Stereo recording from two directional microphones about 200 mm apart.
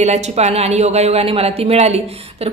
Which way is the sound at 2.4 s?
30° right (ahead or behind).